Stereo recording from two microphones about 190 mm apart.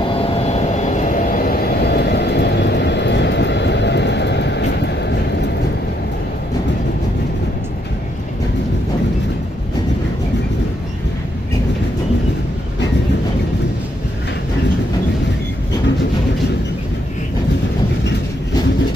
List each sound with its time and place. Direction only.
0.2 s vehicle: 30° left (ahead or behind); by 5.1 s 60° left (ahead or behind)